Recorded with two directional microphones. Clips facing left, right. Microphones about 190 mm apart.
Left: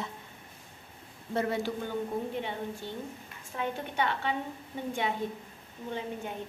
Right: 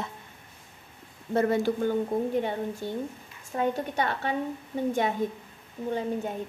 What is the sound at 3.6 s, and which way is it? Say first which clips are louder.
Speech: right 5 dB; 40° right (ahead or behind).